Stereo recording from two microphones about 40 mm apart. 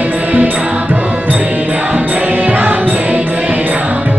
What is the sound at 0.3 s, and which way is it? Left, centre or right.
Music, right.